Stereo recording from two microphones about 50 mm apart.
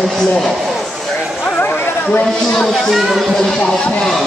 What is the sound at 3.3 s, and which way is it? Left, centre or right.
Speech, centre.